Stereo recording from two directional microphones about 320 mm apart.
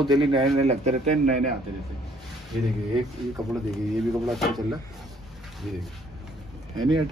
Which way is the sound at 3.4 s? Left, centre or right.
Centre.